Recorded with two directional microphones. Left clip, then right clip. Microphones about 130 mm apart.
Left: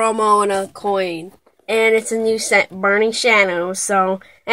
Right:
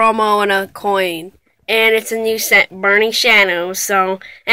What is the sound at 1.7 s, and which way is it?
Speech, 15° left (ahead or behind).